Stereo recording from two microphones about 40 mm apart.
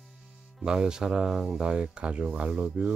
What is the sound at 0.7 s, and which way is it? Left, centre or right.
Speech, centre.